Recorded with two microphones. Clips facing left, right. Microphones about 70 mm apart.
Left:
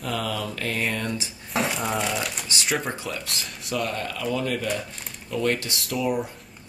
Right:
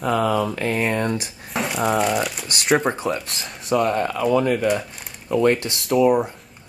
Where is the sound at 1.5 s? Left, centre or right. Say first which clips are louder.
Right 5 dB; centre.